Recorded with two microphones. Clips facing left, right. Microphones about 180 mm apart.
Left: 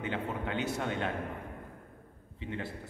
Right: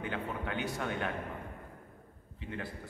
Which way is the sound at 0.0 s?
25° left (ahead or behind).